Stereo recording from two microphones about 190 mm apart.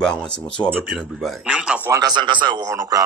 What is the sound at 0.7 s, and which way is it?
Speech, 5° right (ahead or behind).